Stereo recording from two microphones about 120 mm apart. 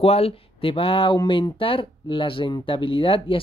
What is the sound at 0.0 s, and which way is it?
Speech, 55° left (ahead or behind).